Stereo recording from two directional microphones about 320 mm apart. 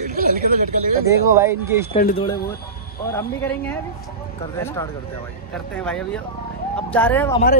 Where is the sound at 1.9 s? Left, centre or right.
Left.